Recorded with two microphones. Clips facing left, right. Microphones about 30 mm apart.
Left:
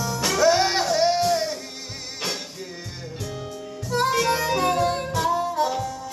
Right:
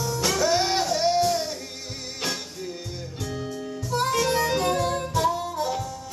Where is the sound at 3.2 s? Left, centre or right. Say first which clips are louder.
Right 3 dB; centre.